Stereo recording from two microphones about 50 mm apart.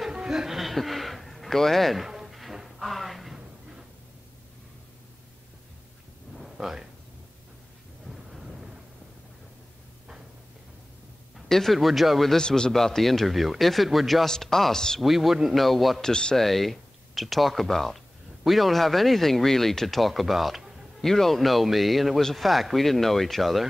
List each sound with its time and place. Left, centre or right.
0.1 s a sound: centre
6.3 s a sound: centre
8.0 s thunder: centre
11.3 s speech: centre
12.4 s a man's voice: centre
15.0 s speech: centre
16.1 s a man's voice: centre
16.3 s speech: centre
21.0 s speech: centre